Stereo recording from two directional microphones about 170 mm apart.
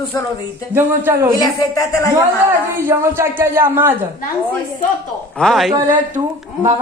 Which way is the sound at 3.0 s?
15° right (ahead or behind).